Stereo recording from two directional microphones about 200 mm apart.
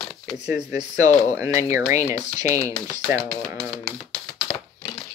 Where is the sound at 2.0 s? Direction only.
35° left (ahead or behind).